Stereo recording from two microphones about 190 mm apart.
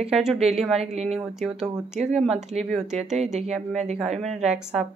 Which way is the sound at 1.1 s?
Centre (ahead or behind).